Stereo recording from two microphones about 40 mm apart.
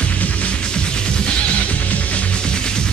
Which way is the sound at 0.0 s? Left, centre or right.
Left.